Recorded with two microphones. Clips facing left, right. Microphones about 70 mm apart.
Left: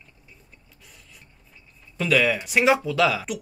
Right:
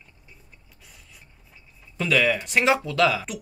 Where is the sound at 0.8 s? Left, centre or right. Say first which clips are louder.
Even; centre.